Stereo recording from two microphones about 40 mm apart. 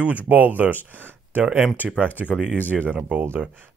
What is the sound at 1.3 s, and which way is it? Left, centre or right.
Speech, right.